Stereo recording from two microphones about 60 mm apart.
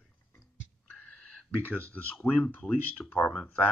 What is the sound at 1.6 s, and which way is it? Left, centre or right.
Speech, left.